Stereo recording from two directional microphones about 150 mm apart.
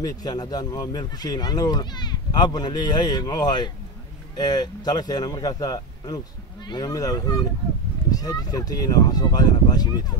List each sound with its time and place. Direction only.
0.0 s speech: 25° left (ahead or behind)